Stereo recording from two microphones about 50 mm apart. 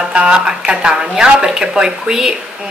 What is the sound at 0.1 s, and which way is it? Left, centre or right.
A woman's voice, right.